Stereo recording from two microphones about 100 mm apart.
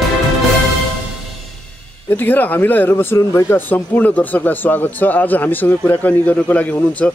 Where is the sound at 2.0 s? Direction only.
20° left (ahead or behind).